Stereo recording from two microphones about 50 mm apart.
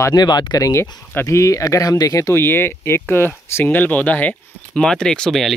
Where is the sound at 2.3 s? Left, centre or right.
Left.